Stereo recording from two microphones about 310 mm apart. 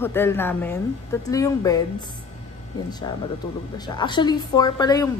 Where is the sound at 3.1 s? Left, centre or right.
Centre.